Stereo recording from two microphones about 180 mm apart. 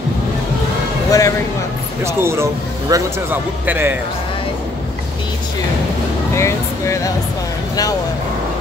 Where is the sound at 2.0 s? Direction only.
15° right (ahead or behind).